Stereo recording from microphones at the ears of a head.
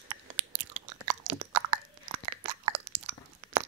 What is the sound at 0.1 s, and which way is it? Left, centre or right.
Chewing, right.